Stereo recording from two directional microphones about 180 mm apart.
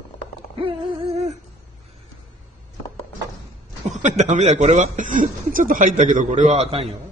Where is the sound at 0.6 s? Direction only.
30° right (ahead or behind).